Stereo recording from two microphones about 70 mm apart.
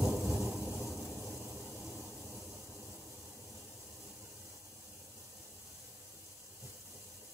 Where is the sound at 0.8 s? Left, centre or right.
Centre.